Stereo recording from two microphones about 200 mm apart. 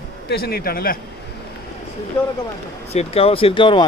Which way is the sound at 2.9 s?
30° left (ahead or behind).